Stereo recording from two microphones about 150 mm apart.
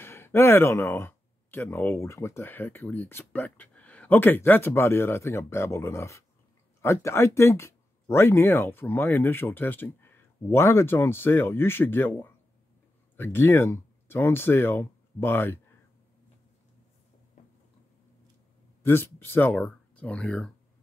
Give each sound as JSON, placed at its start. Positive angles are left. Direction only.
{"t": 0.0, "sound": "speech", "side_deg": 15}
{"t": 17.4, "sound": "a sound", "side_deg": 55}
{"t": 18.9, "sound": "speech", "side_deg": 15}